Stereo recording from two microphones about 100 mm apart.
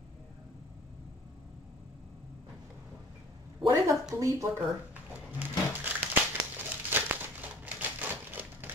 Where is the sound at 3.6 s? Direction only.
55° right (ahead or behind).